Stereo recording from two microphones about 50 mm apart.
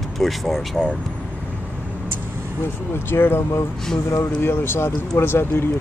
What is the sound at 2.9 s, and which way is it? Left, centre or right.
Speech, left.